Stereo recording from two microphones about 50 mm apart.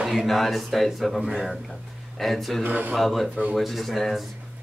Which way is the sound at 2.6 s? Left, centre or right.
Right.